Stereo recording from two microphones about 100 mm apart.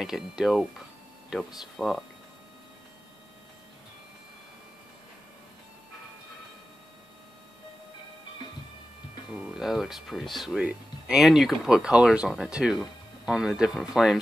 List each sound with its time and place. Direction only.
0.0 s speech: 5° right (ahead or behind)
9.3 s speech: 5° right (ahead or behind)